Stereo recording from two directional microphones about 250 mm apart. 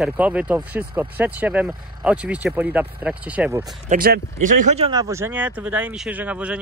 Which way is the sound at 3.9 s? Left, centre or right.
Right.